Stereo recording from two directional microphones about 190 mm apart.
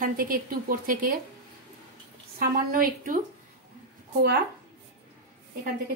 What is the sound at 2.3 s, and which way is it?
Speech, 50° right (ahead or behind).